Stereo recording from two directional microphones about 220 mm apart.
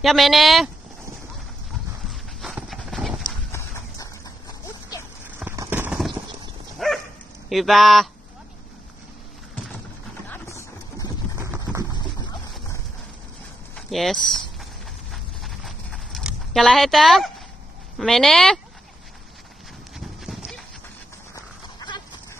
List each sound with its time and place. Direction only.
0.0 s speech: centre (ahead or behind)
2.0 s clip-clop: centre (ahead or behind)
3.3 s horse: 15° left (ahead or behind)
5.4 s a sound: 10° right (ahead or behind)
6.8 s dog: centre (ahead or behind)
7.4 s speech: centre (ahead or behind)
10.2 s clip-clop: 10° left (ahead or behind)
11.3 s a sound: 10° right (ahead or behind)
13.7 s speech: centre (ahead or behind)
15.4 s dog: centre (ahead or behind)
17.9 s speech: centre (ahead or behind)
20.2 s clip-clop: centre (ahead or behind)
21.7 s dog: 20° left (ahead or behind)